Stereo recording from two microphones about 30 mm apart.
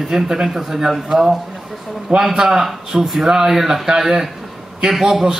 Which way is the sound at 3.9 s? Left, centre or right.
Centre.